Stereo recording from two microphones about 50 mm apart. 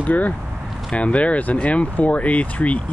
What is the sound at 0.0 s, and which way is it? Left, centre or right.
Speech, left.